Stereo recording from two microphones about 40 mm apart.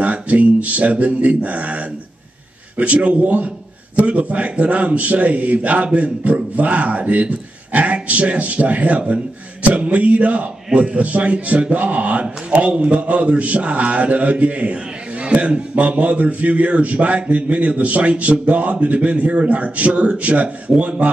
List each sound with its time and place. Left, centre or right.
0.0 s a man's voice: right